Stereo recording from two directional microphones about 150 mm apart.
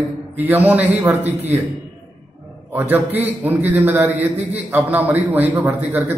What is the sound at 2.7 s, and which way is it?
A man's voice, 10° right (ahead or behind).